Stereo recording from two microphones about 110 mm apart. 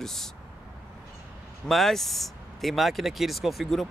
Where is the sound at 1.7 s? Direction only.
Centre (ahead or behind).